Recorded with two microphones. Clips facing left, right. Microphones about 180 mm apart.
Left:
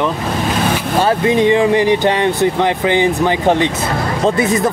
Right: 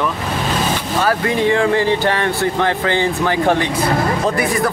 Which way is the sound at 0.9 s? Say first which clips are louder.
Left 4 dB; 25° left (ahead or behind).